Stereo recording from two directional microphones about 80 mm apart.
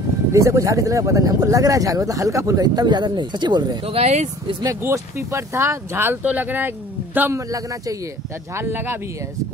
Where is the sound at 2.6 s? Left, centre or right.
Right.